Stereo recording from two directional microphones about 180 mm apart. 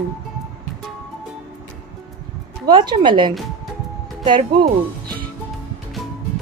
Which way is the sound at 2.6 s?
25° right (ahead or behind).